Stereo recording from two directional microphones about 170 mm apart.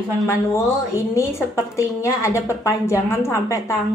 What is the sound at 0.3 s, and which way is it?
A woman's voice, 15° left (ahead or behind).